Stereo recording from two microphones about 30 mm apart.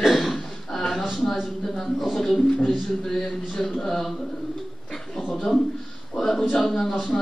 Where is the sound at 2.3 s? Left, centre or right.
Centre.